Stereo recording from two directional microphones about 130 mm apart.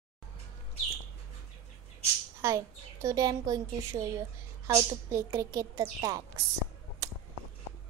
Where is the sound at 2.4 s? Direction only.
25° right (ahead or behind).